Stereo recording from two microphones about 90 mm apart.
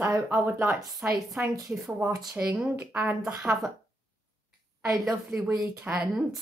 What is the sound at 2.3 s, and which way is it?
A woman's voice, 15° right (ahead or behind).